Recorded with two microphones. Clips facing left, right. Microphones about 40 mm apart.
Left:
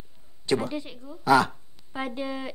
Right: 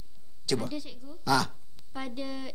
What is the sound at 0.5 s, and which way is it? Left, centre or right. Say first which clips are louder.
A woman's voice: left 5 dB; left.